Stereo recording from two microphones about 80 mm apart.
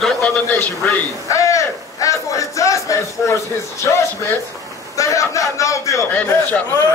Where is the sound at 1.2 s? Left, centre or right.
Left.